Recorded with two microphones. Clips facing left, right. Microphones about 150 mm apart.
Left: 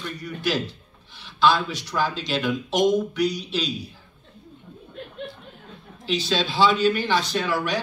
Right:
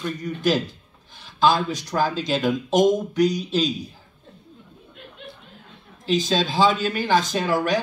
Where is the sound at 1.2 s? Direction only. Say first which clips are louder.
Right 1 dB; 45° right (ahead or behind).